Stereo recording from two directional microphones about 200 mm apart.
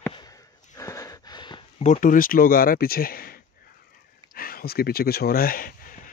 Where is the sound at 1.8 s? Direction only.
40° left (ahead or behind).